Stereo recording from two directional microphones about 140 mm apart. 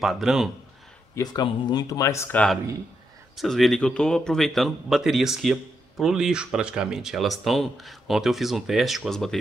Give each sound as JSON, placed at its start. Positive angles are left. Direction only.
{"t": 0.0, "sound": "speech", "side_deg": 0}
{"t": 1.1, "sound": "speech", "side_deg": 30}
{"t": 2.3, "sound": "speech", "side_deg": 5}